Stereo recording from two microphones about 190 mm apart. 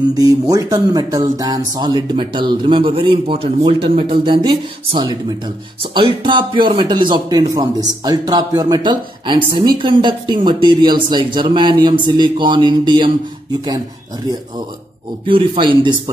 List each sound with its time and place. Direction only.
0.1 s speech: 20° right (ahead or behind)
15.2 s speech: 25° right (ahead or behind)